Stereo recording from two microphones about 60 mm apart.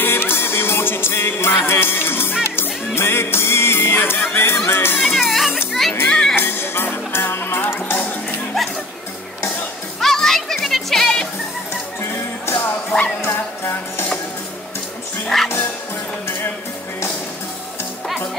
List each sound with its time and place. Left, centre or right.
0.0 s music: left
4.6 s speech: left
5.1 s music: centre
5.7 s children playing: centre
6.0 s music: centre
6.3 s music: left
7.6 s music: left
9.9 s music: centre
12.0 s music: left
15.2 s music: centre
18.0 s music: centre